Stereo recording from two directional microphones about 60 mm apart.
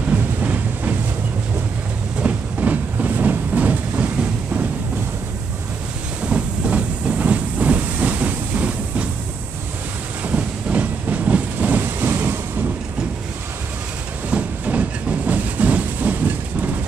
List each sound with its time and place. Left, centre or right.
0.1 s a sound: right
2.2 s train: right
6.2 s train: centre
10.2 s train: right
14.3 s train: right